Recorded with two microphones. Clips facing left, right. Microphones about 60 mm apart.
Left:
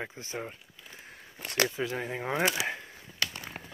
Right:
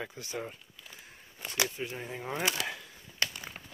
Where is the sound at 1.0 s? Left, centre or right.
Left.